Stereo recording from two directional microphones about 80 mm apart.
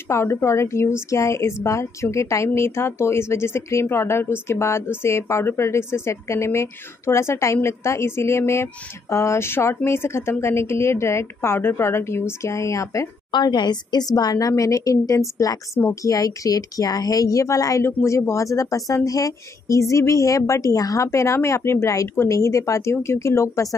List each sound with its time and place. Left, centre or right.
0.1 s speech: left
13.3 s a woman's voice: left